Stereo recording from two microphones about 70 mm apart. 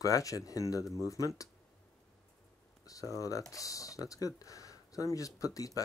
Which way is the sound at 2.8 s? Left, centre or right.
Left.